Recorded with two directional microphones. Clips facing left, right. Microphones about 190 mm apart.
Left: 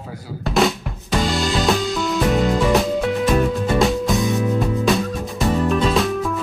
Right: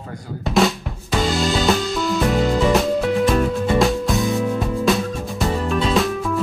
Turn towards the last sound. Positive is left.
turn(degrees=0)  # may be behind; listen again after turning